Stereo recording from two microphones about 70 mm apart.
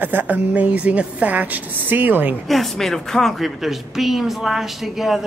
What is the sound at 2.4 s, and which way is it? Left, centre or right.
Speech, centre.